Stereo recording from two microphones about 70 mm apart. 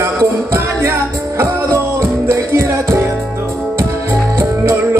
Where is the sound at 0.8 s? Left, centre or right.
Right.